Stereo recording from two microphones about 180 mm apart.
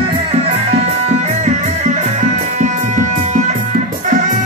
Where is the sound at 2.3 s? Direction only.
40° right (ahead or behind).